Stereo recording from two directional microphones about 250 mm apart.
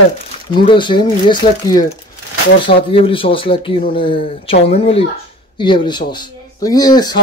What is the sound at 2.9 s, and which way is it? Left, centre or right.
Speech, left.